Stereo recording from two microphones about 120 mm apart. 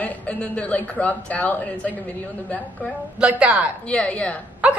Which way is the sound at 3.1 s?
10° right (ahead or behind).